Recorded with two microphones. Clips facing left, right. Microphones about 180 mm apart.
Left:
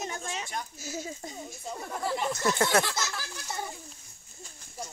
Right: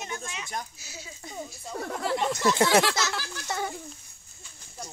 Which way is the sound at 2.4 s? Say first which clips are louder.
Right 4 dB; 90° right.